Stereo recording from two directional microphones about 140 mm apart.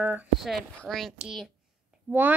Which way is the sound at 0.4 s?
Centre (ahead or behind).